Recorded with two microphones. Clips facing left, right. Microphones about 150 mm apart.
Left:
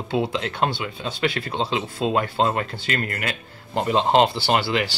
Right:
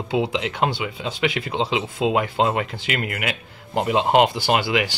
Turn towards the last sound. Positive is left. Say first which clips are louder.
# right 1 dB
turn(degrees=-15)  # may be behind; listen again after turning